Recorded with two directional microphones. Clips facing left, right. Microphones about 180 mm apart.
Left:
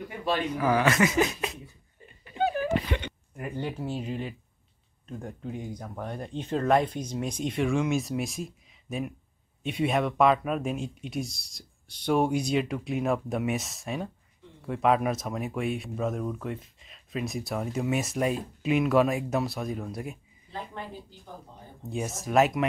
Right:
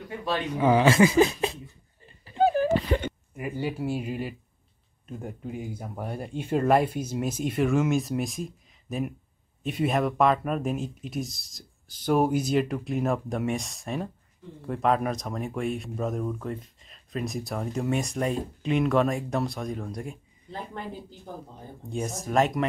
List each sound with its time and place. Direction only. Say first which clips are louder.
0.6 s speech: right 6 dB; 25° right (ahead or behind)
2.2 s a sound: right 5 dB; 35° right (ahead or behind)
3.3 s speech: right 2 dB; 5° right (ahead or behind)
21.8 s speech: right 1 dB; centre (ahead or behind)